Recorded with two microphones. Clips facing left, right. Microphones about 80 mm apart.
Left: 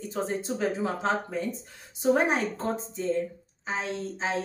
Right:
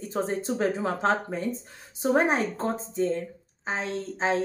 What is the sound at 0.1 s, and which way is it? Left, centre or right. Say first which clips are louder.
A woman's voice: right 3 dB; right.